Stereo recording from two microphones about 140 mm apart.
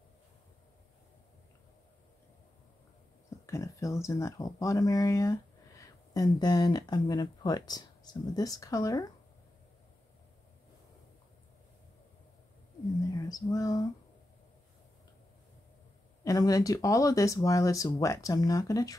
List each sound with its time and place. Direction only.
3.4 s speech: 20° left (ahead or behind)
13.1 s a sound: 25° left (ahead or behind)
16.3 s speech: 25° left (ahead or behind)